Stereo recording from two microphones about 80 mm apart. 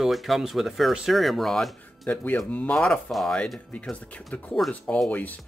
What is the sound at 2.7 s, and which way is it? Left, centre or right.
Speech, centre.